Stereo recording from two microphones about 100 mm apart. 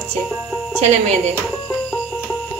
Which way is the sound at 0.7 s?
90° right.